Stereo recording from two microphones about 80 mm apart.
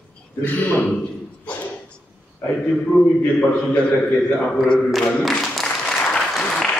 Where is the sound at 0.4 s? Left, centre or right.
Left.